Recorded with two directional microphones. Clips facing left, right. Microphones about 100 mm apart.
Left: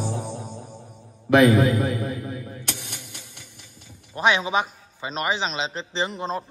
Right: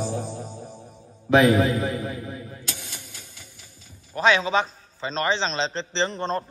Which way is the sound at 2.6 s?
65° left (ahead or behind).